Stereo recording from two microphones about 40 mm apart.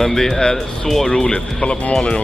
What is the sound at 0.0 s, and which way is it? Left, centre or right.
Speech, centre.